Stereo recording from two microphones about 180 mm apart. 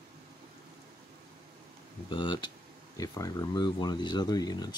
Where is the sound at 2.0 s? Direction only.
25° left (ahead or behind).